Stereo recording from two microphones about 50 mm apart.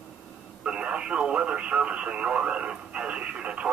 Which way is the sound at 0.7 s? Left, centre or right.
Centre.